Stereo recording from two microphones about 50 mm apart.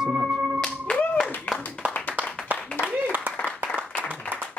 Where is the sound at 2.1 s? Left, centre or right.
Right.